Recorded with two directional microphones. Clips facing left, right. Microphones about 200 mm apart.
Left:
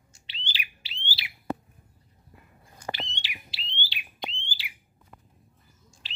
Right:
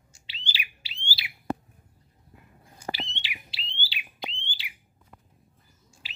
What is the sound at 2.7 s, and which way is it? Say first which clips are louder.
Bird: even; 5° right (ahead or behind).